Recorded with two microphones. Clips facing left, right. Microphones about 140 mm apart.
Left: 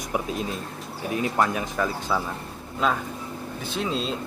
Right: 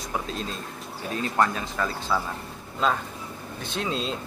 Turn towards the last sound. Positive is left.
turn(degrees=0)  # may be behind; listen again after turning